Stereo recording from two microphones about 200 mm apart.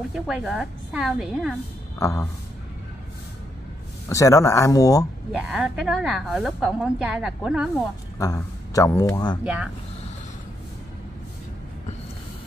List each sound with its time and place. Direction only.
0.1 s a woman's voice: centre (ahead or behind)
2.0 s speech: 15° left (ahead or behind)
4.1 s speech: 15° left (ahead or behind)
5.5 s a woman's voice: 5° right (ahead or behind)
8.2 s speech: 15° left (ahead or behind)
9.4 s a woman's voice: 5° right (ahead or behind)